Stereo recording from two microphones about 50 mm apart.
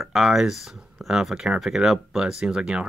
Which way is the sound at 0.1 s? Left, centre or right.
Centre.